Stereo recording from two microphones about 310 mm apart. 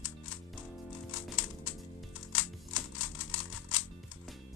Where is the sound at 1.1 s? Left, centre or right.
Left.